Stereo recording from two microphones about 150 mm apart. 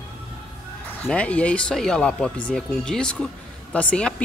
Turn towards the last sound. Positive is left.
turn(degrees=5)  # may be behind; listen again after turning